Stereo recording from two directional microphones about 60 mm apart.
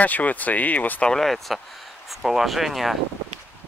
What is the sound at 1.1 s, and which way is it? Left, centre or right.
Speech, centre.